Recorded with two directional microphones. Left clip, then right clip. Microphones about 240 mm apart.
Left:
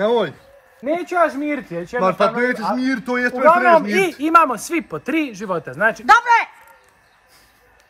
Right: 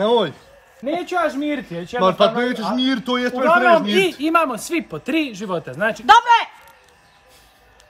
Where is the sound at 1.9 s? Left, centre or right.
Centre.